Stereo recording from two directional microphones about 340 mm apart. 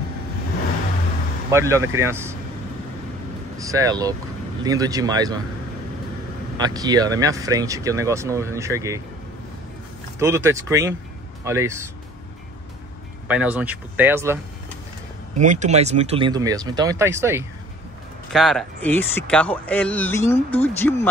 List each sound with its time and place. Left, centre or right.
1.5 s speech: centre
3.5 s speech: centre
6.6 s speech: centre
10.1 s speech: centre
13.3 s speech: centre
15.3 s speech: right; by 21.1 s centre